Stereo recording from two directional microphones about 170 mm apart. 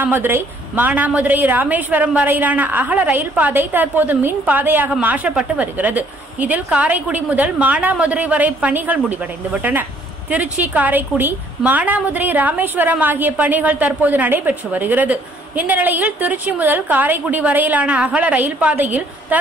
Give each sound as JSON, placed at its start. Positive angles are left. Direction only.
{"t": 0.0, "sound": "a woman's voice", "side_deg": -10}